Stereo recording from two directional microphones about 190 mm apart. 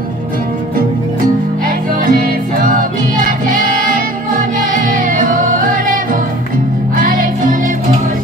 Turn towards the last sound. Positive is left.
turn(degrees=-45)  # may be behind; listen again after turning